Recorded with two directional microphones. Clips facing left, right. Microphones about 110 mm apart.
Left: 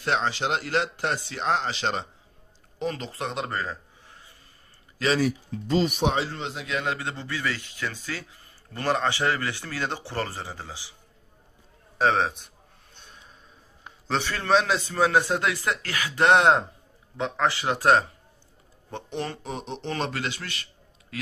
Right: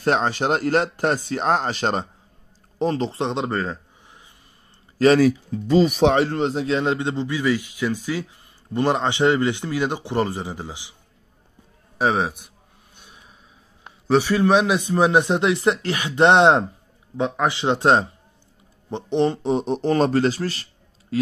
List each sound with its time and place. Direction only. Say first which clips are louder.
0.0 s speech: right 5 dB; 45° right (ahead or behind)
2.8 s speech: right 8 dB; 30° right (ahead or behind)
4.9 s a man's voice: right 10 dB; 45° right (ahead or behind)
6.0 s a man's voice: right 8 dB; 60° right (ahead or behind)
6.5 s a man's voice: right 8 dB; 30° right (ahead or behind)
12.0 s a man's voice: right 2 dB; 10° right (ahead or behind)
12.9 s snort: right 1 dB; 10° right (ahead or behind)
14.0 s a man's voice: right 10 dB; 10° right (ahead or behind); by 21.3 s 30° right (ahead or behind)